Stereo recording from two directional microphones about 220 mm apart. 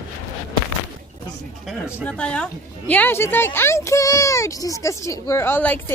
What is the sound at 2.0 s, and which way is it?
Speech, 5° left (ahead or behind).